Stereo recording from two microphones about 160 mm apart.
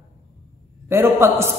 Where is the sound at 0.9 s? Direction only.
15° right (ahead or behind).